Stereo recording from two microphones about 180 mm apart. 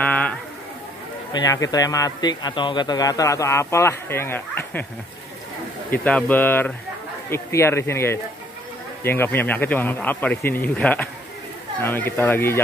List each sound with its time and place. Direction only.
0.0 s a sound: 10° left (ahead or behind)
1.3 s a man's voice: 20° left (ahead or behind)
5.9 s speech: 10° left (ahead or behind)